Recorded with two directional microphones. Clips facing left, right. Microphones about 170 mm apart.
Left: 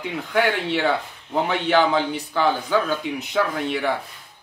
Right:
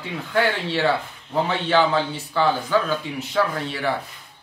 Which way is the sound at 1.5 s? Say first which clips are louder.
Left 1 dB; 15° left (ahead or behind).